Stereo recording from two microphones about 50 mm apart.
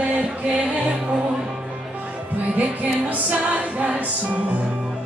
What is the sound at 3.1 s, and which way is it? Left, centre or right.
Music, right.